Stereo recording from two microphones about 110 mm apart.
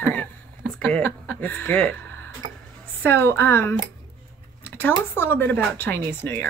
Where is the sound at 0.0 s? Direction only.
15° left (ahead or behind).